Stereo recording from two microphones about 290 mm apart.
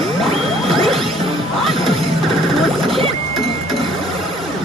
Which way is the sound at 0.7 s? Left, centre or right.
Centre.